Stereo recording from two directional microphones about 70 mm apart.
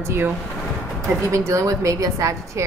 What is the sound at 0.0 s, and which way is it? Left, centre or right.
Speech, right.